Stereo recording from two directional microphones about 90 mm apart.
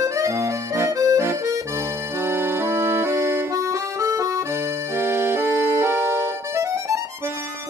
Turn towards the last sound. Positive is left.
turn(degrees=-30)  # may be behind; listen again after turning